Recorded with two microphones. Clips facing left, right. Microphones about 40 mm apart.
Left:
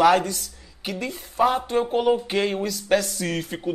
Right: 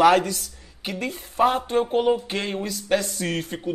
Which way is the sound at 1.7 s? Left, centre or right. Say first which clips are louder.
Even; centre.